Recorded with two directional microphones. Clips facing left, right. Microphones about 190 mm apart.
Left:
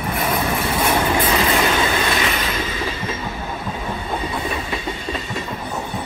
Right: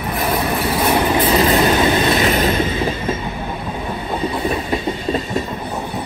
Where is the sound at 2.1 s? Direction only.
40° right (ahead or behind).